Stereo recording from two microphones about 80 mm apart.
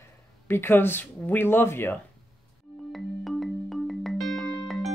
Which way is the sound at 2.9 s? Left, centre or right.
Centre.